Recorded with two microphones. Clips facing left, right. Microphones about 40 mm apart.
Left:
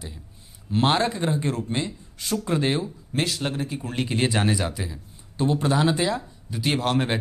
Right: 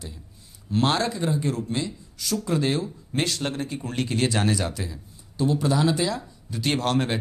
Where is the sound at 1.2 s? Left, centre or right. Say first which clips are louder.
Even; left.